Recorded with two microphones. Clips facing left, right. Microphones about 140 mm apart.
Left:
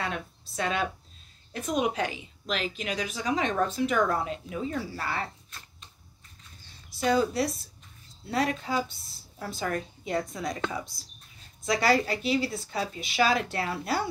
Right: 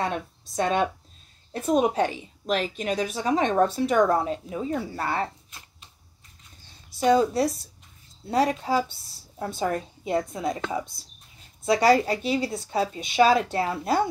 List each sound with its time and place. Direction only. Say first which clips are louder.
0.0 s a woman's voice: right 5 dB; 35° right (ahead or behind)
7.0 s speech: right 5 dB; 25° right (ahead or behind)